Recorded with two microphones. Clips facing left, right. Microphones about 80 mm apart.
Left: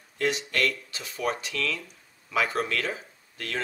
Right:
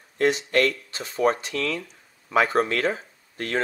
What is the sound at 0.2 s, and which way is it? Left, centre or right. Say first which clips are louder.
Speech: right 6 dB; right.